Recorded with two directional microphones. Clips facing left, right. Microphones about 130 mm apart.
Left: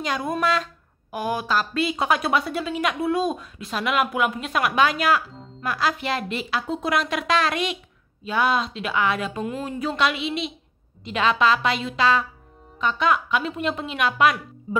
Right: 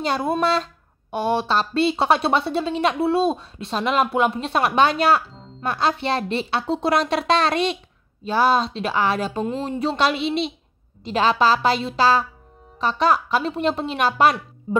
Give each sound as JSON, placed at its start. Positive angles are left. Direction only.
{"t": 0.0, "sound": "a woman's voice", "side_deg": -30}